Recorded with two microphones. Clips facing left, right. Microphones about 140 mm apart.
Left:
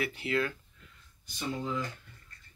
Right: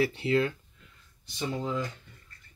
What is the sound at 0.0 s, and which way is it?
Speech, 30° right (ahead or behind).